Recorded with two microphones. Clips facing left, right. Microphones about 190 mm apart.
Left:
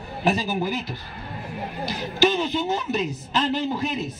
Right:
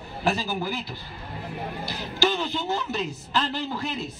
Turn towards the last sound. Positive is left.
turn(degrees=20)  # may be behind; listen again after turning